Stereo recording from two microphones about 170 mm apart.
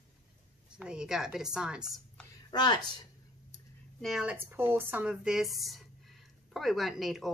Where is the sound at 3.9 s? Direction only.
Centre (ahead or behind).